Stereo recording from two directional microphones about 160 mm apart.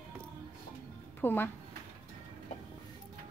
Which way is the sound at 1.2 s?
15° left (ahead or behind).